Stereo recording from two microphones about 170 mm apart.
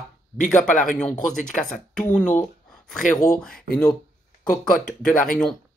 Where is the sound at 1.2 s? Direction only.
5° left (ahead or behind).